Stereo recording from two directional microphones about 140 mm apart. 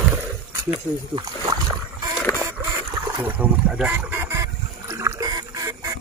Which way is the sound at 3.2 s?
10° right (ahead or behind).